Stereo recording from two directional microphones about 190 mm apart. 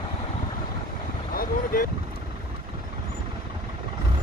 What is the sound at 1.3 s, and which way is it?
Boat, 50° left (ahead or behind).